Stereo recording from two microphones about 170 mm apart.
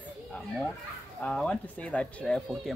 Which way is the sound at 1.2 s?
5° left (ahead or behind).